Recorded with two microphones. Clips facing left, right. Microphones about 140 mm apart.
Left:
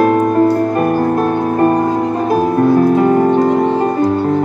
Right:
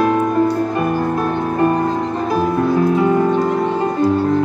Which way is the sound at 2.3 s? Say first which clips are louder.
Left 5 dB; 45° left (ahead or behind).